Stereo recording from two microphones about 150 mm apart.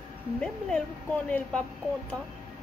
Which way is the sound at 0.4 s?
5° left (ahead or behind).